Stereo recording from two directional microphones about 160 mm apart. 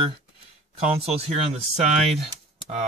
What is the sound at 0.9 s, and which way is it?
Speech, 40° right (ahead or behind).